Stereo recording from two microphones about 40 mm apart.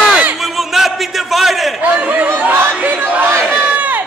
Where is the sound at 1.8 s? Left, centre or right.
Right.